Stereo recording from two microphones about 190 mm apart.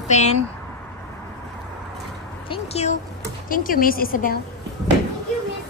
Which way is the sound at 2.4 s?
30° left (ahead or behind).